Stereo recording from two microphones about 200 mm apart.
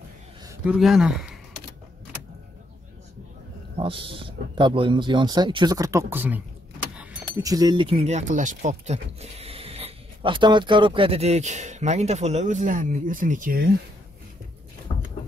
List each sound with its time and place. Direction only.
0.7 s speech: centre (ahead or behind)
3.7 s speech: 25° right (ahead or behind); by 6.4 s 10° right (ahead or behind)
7.4 s speech: 20° right (ahead or behind); by 13.7 s 45° right (ahead or behind)